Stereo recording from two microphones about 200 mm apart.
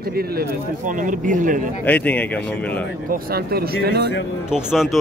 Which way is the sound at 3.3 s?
50° right (ahead or behind).